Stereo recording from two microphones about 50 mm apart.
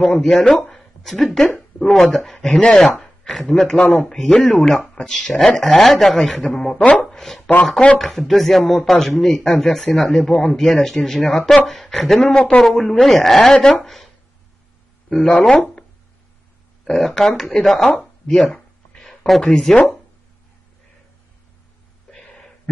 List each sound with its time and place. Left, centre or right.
0.0 s speech: centre
0.6 s a sound: centre
1.9 s speech: centre
2.3 s speech: centre
2.9 s speech: centre
6.8 s speech: left
7.1 s a sound: centre
8.3 s speech: centre
12.2 s speech: centre
15.4 s speech: centre
17.0 s speech: centre
17.9 s a sound: centre
19.7 s speech: left
22.1 s a sound: centre